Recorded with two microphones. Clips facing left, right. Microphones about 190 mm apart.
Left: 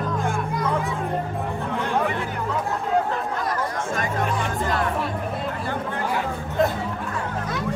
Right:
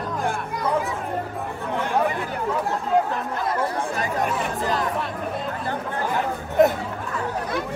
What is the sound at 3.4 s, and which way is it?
Chatter, 30° right (ahead or behind).